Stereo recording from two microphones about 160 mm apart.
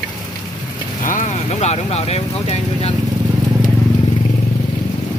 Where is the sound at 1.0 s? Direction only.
55° left (ahead or behind).